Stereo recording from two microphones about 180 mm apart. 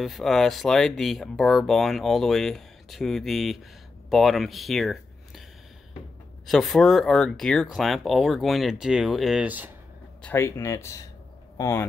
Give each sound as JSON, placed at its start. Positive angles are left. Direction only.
{"t": 0.0, "sound": "speech", "side_deg": 0}
{"t": 6.4, "sound": "speech", "side_deg": 0}
{"t": 10.2, "sound": "speech", "side_deg": 15}